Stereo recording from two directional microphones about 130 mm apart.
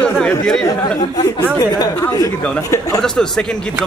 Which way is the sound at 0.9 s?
30° left (ahead or behind).